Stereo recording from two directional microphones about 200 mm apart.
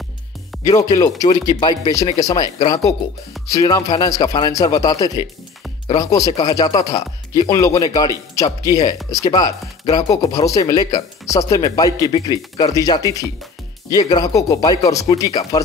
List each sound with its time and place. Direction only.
0.7 s speech: 15° left (ahead or behind)